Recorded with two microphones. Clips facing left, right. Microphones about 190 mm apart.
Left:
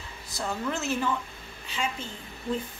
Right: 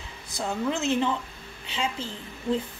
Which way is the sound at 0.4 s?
20° right (ahead or behind).